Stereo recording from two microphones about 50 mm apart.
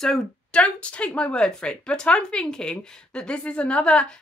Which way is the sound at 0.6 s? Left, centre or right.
Left.